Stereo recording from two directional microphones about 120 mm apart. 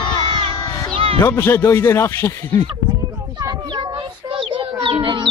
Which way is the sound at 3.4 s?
35° right (ahead or behind).